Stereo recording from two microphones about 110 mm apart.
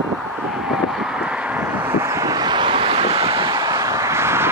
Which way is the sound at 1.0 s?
5° right (ahead or behind).